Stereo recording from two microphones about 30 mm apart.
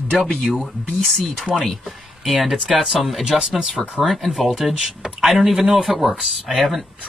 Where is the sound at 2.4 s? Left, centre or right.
Centre.